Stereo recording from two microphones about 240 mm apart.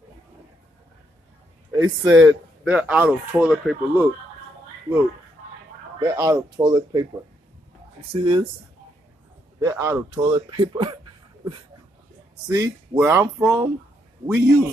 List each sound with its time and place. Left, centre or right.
1.7 s speech: centre
5.9 s speech: centre
8.1 s speech: right
9.6 s speech: centre
10.1 s speech: right
12.4 s speech: centre